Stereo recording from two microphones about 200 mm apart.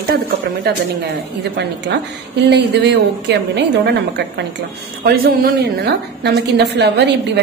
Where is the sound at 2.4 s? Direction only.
60° right (ahead or behind).